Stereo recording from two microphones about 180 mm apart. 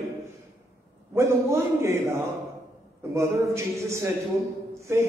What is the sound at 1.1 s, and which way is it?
A man's voice, 15° right (ahead or behind).